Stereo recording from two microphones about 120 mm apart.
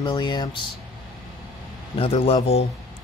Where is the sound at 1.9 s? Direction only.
55° left (ahead or behind).